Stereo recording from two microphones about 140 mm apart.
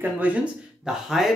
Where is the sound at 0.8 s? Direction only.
Centre (ahead or behind).